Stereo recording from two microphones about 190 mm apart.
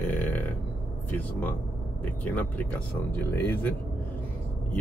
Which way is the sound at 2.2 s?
10° left (ahead or behind).